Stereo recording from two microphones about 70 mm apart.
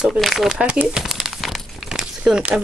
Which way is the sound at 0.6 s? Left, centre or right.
Centre.